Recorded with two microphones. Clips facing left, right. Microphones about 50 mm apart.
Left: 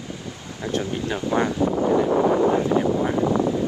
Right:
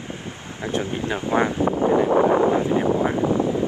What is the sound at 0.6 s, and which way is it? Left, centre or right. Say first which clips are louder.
Speech: even; right.